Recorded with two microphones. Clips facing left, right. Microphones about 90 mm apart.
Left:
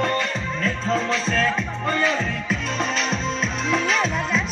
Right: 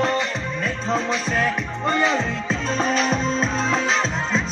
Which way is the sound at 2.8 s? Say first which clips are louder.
Right 6 dB; 45° right (ahead or behind).